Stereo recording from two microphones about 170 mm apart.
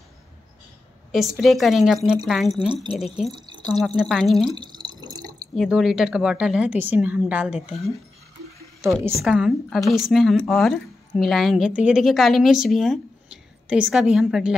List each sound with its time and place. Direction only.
1.1 s a woman's voice: centre (ahead or behind)
3.3 s speech: 25° right (ahead or behind)
3.7 s a woman's voice: centre (ahead or behind)
4.5 s drip: 25° right (ahead or behind)
5.6 s a woman's voice: centre (ahead or behind)
8.8 s a woman's voice: 15° right (ahead or behind)
9.2 s a woman's voice: 5° right (ahead or behind)